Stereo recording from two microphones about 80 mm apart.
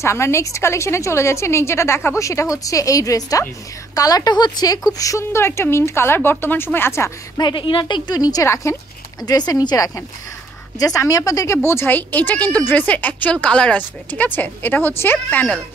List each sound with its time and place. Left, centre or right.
0.0 s a woman's voice: left
2.1 s speech: left
4.9 s a woman's voice: left
7.3 s speech: left
8.2 s a woman's voice: left; by 15.6 s centre